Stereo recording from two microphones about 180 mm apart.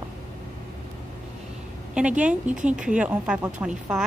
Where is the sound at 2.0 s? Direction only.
5° right (ahead or behind).